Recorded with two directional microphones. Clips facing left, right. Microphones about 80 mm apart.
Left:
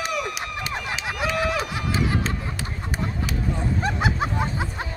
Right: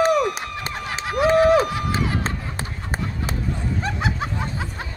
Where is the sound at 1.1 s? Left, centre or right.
Right.